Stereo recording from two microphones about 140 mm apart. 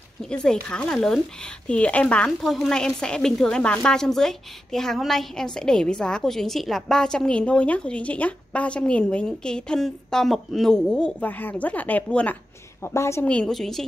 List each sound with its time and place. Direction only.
0.2 s a woman's voice: 5° left (ahead or behind)
13.3 s a woman's voice: 5° left (ahead or behind)